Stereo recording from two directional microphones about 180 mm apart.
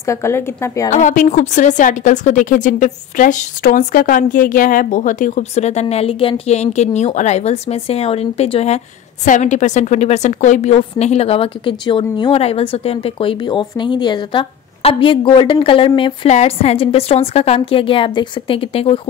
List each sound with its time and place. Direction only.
0.0 s speech: 15° left (ahead or behind)
0.8 s a woman's voice: 40° left (ahead or behind)